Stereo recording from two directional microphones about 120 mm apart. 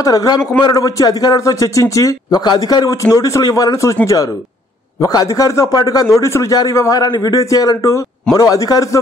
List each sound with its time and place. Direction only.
0.0 s a man's voice: 30° left (ahead or behind)